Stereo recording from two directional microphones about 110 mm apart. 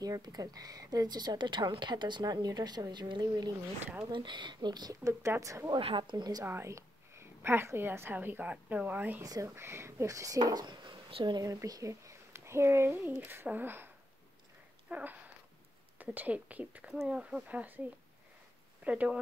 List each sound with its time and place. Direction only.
0.0 s a woman's voice: 35° right (ahead or behind)
5.0 s speech: 25° right (ahead or behind)
5.8 s speech: 50° right (ahead or behind)
6.4 s a woman's voice: 20° right (ahead or behind)
9.2 s a woman's voice: 30° right (ahead or behind); by 11.3 s 55° right (ahead or behind)
11.3 s speech: 35° right (ahead or behind); by 13.8 s 20° right (ahead or behind)
14.9 s a sound: 10° right (ahead or behind)
16.0 s speech: 15° right (ahead or behind)
18.9 s speech: 10° right (ahead or behind)